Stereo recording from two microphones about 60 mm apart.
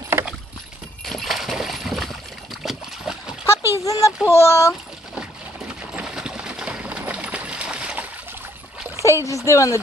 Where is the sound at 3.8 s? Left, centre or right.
Left.